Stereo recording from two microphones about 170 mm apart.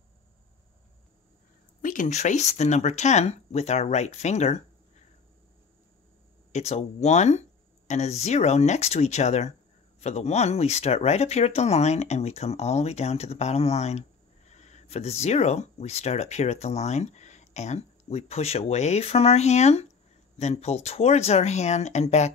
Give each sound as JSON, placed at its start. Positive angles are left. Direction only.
{"t": 1.8, "sound": "speech", "side_deg": 50}
{"t": 6.5, "sound": "speech", "side_deg": 40}